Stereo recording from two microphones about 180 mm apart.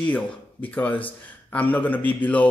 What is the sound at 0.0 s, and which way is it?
Speech, 10° left (ahead or behind).